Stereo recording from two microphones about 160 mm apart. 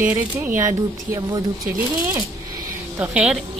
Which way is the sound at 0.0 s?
15° right (ahead or behind).